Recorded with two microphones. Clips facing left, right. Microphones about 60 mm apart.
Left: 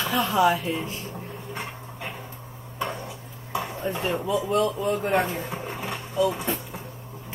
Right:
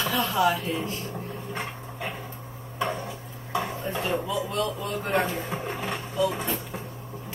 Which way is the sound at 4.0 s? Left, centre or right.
Left.